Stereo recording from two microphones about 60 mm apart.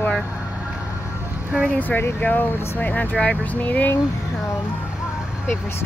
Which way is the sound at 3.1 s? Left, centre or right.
Centre.